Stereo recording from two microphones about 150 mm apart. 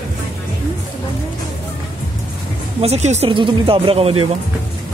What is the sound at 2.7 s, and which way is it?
Speech, 45° right (ahead or behind).